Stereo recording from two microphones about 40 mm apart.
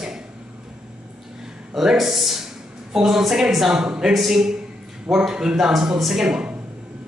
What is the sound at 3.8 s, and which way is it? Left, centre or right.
Speech, centre.